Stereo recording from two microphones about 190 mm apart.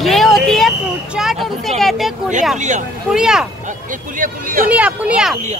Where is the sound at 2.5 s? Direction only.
40° right (ahead or behind).